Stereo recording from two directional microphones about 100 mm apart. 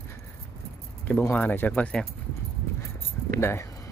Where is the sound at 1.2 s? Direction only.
20° left (ahead or behind).